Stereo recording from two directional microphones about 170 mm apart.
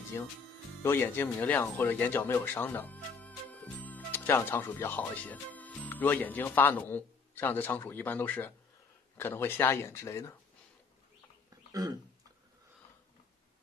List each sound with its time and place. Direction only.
0.2 s speech: 15° left (ahead or behind)